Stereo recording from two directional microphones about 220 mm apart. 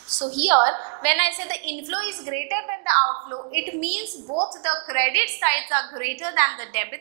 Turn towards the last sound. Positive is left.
turn(degrees=-15)  # may be behind; listen again after turning